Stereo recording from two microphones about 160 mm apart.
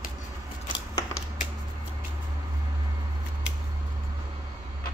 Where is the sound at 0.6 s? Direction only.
30° left (ahead or behind).